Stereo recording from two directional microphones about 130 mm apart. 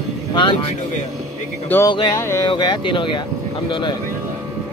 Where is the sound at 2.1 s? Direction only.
20° left (ahead or behind).